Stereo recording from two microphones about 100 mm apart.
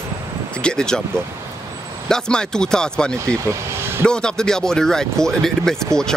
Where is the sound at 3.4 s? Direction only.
25° right (ahead or behind).